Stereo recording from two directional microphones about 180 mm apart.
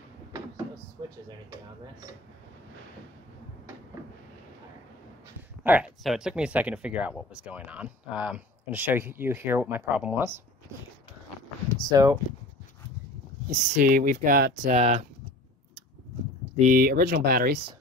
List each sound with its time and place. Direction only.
5.6 s speech: 10° right (ahead or behind)
11.9 s speech: 20° right (ahead or behind)
13.5 s speech: 50° right (ahead or behind)
14.7 s speech: 35° right (ahead or behind)
16.5 s speech: 50° right (ahead or behind)